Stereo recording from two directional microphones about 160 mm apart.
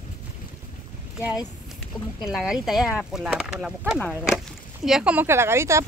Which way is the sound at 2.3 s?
5° right (ahead or behind).